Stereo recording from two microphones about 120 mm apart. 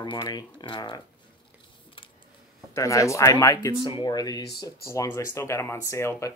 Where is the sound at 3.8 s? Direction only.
40° left (ahead or behind).